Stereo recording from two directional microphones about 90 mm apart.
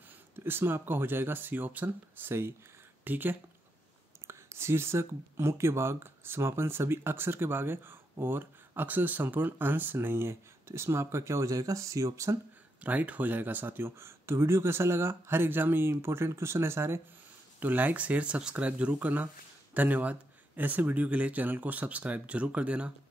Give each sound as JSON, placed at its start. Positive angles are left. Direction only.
{"t": 0.4, "sound": "speech", "side_deg": -25}
{"t": 12.8, "sound": "speech", "side_deg": -15}